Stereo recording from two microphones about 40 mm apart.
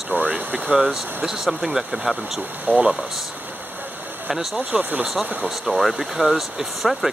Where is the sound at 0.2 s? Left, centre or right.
Right.